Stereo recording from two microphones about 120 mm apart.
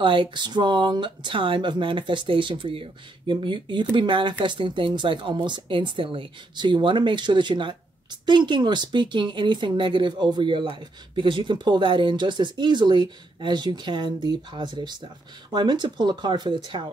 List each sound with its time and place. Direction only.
0.0 s speech: 45° right (ahead or behind)